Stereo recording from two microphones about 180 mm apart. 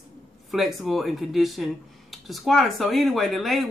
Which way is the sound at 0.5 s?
Centre (ahead or behind).